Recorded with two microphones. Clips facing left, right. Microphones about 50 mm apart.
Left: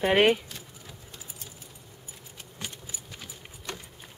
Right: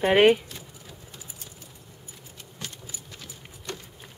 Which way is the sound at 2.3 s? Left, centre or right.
Centre.